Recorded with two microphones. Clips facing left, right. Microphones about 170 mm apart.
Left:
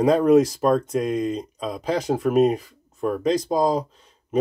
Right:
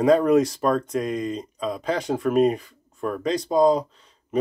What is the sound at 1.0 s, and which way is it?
Speech, 5° left (ahead or behind).